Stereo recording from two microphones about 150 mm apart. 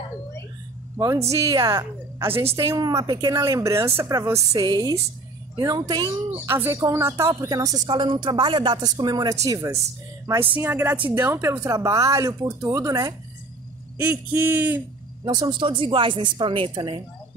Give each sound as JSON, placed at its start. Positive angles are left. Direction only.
{"t": 0.9, "sound": "speech", "side_deg": -20}
{"t": 15.2, "sound": "a woman's voice", "side_deg": -30}